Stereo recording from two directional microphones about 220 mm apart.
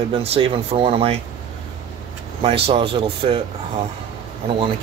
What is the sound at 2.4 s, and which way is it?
Speech, 25° right (ahead or behind).